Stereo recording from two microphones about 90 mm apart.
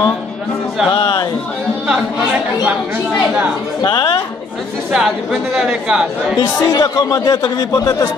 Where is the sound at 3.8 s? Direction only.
55° left (ahead or behind).